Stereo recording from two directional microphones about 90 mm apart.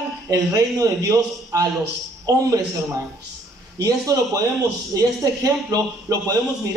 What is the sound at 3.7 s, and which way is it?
A man's voice, 40° right (ahead or behind).